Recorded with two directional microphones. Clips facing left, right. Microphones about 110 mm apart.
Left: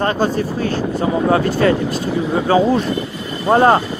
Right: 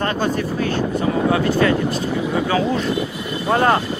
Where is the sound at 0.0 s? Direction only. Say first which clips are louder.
Left 3 dB; 35° left (ahead or behind).